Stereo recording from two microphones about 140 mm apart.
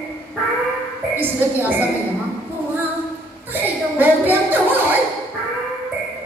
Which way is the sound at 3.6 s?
15° right (ahead or behind).